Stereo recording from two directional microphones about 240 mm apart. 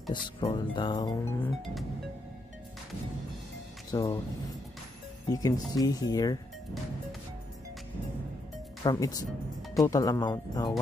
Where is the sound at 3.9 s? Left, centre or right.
Centre.